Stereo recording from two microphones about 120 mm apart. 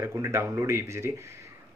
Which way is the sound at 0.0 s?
25° right (ahead or behind).